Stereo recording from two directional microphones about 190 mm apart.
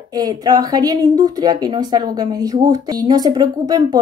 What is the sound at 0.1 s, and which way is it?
Speech, 20° right (ahead or behind).